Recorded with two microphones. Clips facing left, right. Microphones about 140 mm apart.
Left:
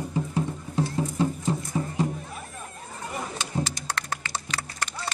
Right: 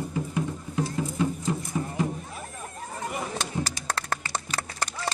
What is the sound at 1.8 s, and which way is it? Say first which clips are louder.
Music: left 1 dB; 15° left (ahead or behind).